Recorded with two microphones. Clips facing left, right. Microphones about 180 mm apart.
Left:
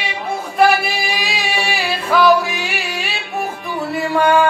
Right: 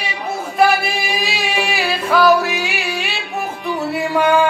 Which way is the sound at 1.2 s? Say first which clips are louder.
Right 1 dB; centre (ahead or behind).